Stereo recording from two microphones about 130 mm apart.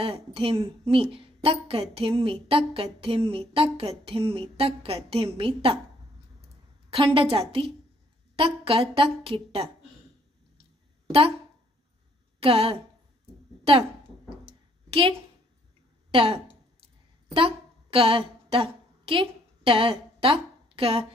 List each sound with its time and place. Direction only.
0.0 s a woman's voice: 45° right (ahead or behind)
6.9 s a woman's voice: 45° right (ahead or behind)
11.1 s speech: 50° right (ahead or behind)
12.4 s a woman's voice: 45° right (ahead or behind)
14.4 s a sound: 45° right (ahead or behind)
16.1 s speech: 45° right (ahead or behind)
17.3 s a sound: 45° right (ahead or behind)